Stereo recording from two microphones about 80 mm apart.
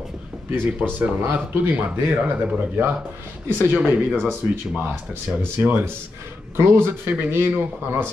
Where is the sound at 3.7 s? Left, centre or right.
Right.